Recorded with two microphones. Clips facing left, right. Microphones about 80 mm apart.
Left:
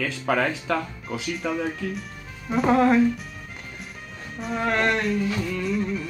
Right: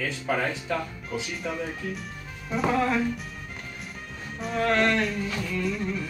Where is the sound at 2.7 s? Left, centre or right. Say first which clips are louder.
Left 7 dB; left.